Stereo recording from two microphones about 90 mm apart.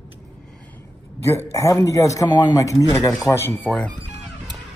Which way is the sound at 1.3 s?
35° left (ahead or behind).